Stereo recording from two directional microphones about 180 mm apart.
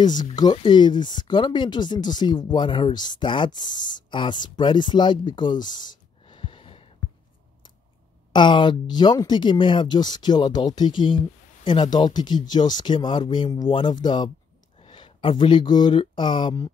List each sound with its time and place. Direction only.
0.2 s speech: 25° left (ahead or behind)
6.2 s a sound: 30° left (ahead or behind)
8.3 s speech: 25° left (ahead or behind)